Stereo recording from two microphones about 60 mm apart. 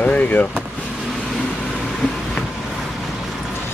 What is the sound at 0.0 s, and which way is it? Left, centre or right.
Vehicle, left.